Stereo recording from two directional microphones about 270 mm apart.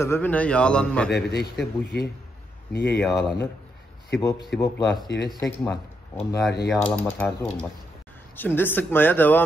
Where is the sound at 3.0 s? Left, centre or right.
Centre.